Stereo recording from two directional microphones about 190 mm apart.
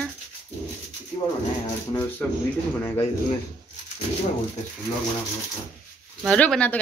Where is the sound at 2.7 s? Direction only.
10° left (ahead or behind).